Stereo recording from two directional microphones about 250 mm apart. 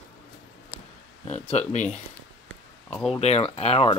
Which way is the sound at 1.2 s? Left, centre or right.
Left.